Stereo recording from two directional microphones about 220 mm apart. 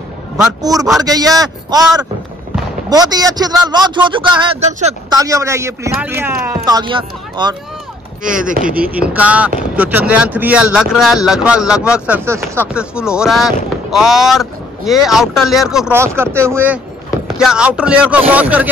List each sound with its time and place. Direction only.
0.6 s a man's voice: 15° right (ahead or behind); by 4.9 s 30° right (ahead or behind)
5.1 s a man's voice: 15° right (ahead or behind)
8.2 s speech: 5° right (ahead or behind)
8.5 s speech: 40° right (ahead or behind)
9.0 s a man's voice: 5° right (ahead or behind)